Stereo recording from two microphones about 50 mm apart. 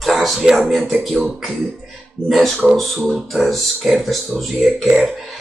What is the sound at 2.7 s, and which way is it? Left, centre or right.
Speech, centre.